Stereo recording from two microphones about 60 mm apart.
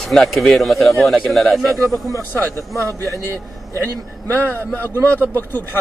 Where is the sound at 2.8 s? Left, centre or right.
Right.